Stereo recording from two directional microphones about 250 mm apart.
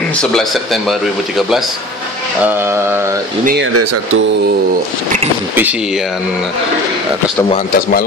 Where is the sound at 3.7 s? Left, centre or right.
Right.